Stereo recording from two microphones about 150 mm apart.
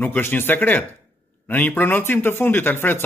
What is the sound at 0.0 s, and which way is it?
A man's voice, 15° left (ahead or behind).